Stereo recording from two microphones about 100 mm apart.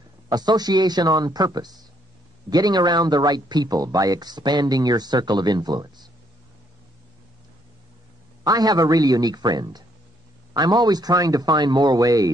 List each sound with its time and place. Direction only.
0.3 s speech: 45° right (ahead or behind)
8.5 s speech: 40° right (ahead or behind)